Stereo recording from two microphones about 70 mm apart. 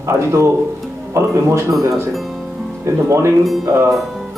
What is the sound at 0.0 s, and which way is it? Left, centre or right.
Speech, right.